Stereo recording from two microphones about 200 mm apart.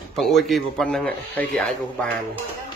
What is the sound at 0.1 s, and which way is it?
A man's voice, centre (ahead or behind).